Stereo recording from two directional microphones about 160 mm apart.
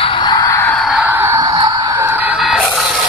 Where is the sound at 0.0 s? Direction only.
30° left (ahead or behind).